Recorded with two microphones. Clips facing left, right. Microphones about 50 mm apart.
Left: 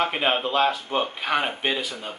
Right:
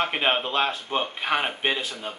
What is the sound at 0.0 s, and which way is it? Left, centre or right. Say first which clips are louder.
Speech: left 1 dB; centre.